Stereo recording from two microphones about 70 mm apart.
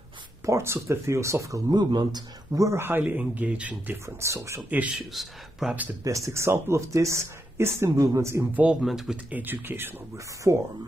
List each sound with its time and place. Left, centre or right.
0.5 s speech: right
1.7 s speech: right
2.5 s speech: right
2.8 s speech: right
3.8 s speech: right
4.2 s speech: right
4.6 s speech: centre
5.1 s speech: centre
6.0 s speech: right
8.8 s speech: centre
9.1 s speech: right
10.1 s speech: right